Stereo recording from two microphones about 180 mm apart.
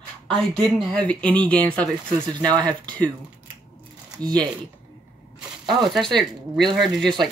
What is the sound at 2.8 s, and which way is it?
Speech, 5° left (ahead or behind).